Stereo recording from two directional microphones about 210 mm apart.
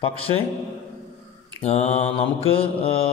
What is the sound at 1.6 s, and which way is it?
A man's voice, 30° left (ahead or behind).